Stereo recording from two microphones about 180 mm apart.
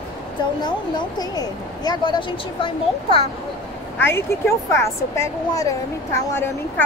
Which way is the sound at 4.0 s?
15° left (ahead or behind).